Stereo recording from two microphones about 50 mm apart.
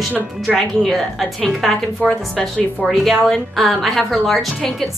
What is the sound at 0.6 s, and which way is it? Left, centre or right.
A woman's voice, centre.